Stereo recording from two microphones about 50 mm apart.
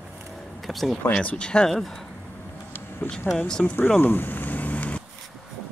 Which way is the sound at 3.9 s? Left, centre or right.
Left.